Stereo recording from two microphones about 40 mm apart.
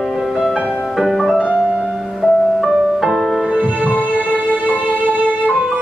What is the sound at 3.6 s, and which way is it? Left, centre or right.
Music, right.